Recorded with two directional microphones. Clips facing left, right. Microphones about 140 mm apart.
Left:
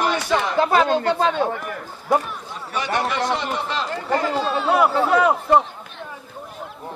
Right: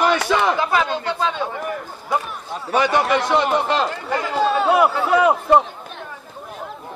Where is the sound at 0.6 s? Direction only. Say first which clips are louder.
Left 3 dB; 40° left (ahead or behind).